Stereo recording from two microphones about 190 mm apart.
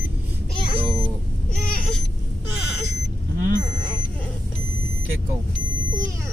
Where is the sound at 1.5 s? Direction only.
50° left (ahead or behind).